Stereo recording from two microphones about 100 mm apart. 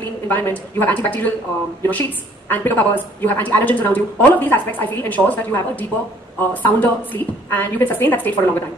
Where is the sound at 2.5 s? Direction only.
20° left (ahead or behind).